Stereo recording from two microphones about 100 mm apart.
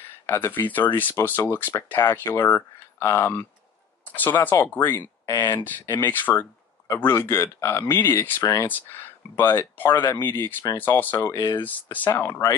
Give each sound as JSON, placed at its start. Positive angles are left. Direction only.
{"t": 0.3, "sound": "speech", "side_deg": 20}
{"t": 11.2, "sound": "speech", "side_deg": 40}
{"t": 11.6, "sound": "speech", "side_deg": 15}